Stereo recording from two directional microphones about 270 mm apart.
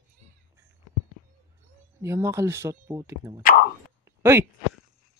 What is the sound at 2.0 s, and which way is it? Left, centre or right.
Speech, centre.